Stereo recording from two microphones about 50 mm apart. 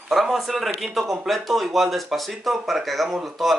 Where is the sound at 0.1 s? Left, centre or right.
Centre.